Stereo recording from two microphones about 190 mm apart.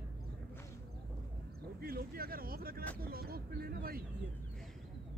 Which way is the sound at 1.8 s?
50° right (ahead or behind).